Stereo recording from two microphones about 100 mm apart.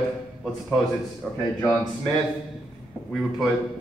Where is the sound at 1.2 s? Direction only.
15° left (ahead or behind).